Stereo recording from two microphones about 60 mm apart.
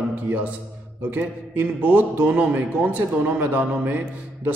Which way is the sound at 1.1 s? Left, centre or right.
Right.